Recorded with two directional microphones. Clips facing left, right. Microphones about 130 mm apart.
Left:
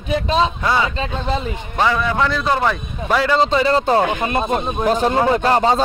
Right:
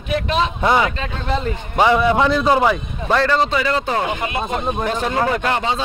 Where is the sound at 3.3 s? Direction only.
30° left (ahead or behind).